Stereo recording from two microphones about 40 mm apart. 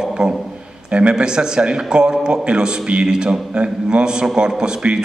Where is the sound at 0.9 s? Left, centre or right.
Right.